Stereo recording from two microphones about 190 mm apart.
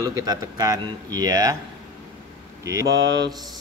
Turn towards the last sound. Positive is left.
turn(degrees=-70)  # may be behind; listen again after turning